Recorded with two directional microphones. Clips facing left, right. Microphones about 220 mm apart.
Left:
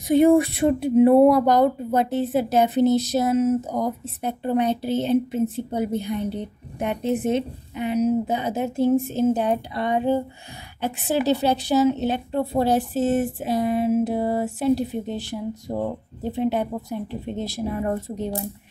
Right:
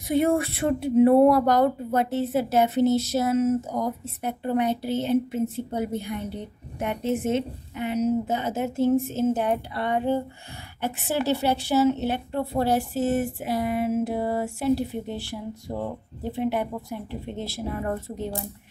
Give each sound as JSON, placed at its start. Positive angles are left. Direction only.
{"t": 0.1, "sound": "a woman's voice", "side_deg": 15}